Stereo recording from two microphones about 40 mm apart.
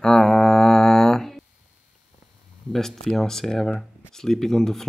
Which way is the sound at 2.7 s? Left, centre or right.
Centre.